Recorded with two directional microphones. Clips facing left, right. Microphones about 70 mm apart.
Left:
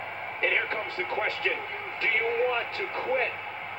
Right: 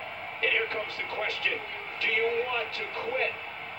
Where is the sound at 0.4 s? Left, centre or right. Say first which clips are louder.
Left 1 dB; left.